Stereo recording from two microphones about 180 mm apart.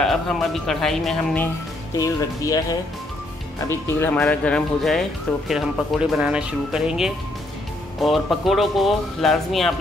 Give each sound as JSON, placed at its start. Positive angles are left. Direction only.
{"t": 0.0, "sound": "speech", "side_deg": 0}
{"t": 2.0, "sound": "speech", "side_deg": 20}